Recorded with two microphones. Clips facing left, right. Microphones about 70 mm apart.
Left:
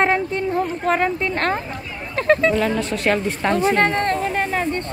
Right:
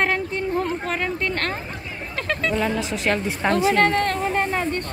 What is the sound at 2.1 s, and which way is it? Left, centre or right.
Speech, left.